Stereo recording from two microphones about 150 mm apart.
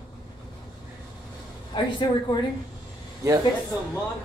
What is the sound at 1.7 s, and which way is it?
Speech, 35° left (ahead or behind).